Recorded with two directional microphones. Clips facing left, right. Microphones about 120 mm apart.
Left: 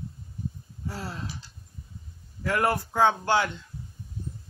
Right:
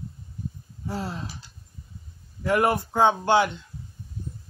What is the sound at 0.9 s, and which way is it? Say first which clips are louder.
Speech: right 5 dB; 20° right (ahead or behind).